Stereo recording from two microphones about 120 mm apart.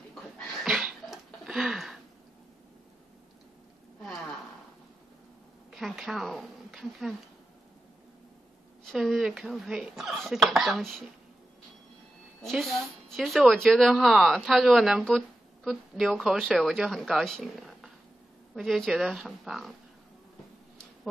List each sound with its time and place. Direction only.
0.1 s a sound: centre (ahead or behind)
5.7 s a woman's voice: centre (ahead or behind)
8.9 s a woman's voice: 5° right (ahead or behind)
12.4 s a woman's voice: centre (ahead or behind)